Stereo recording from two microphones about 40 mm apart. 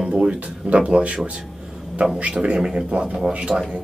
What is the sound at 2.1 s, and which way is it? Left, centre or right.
Speech, right.